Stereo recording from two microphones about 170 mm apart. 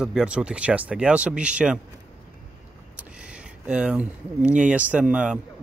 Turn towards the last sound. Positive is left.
turn(degrees=-5)  # may be behind; listen again after turning